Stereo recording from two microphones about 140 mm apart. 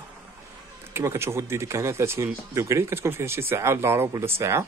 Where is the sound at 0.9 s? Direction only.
20° right (ahead or behind).